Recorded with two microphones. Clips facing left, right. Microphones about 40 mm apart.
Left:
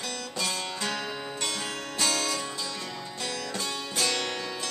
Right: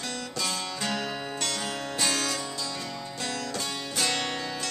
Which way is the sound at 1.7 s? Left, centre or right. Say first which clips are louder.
Even; centre.